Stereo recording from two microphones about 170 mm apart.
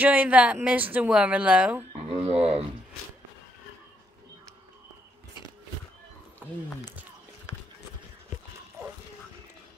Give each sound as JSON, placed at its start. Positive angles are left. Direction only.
{"t": 0.0, "sound": "speech", "side_deg": -10}
{"t": 2.0, "sound": "speech", "side_deg": -40}
{"t": 6.8, "sound": "speech", "side_deg": -10}